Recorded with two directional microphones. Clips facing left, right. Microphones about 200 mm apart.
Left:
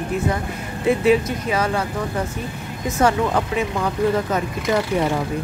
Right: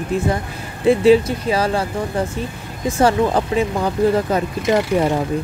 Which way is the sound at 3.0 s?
30° right (ahead or behind).